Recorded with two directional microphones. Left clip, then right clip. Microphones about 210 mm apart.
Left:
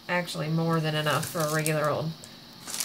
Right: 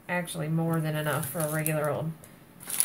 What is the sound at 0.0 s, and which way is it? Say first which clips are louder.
Speech: left 3 dB; 10° left (ahead or behind).